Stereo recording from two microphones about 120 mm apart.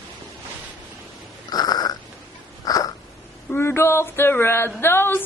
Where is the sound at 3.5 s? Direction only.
20° left (ahead or behind).